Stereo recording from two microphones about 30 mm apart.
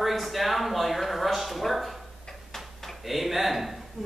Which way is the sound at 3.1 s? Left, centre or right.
Centre.